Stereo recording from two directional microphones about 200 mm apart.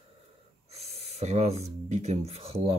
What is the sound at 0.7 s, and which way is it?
Speech, 30° right (ahead or behind).